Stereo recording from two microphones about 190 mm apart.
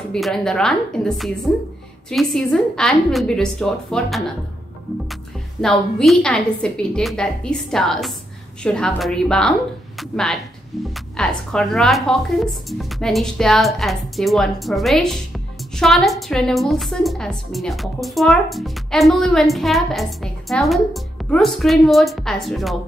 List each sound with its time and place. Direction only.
0.1 s a woman's voice: 5° left (ahead or behind)
5.6 s a woman's voice: centre (ahead or behind)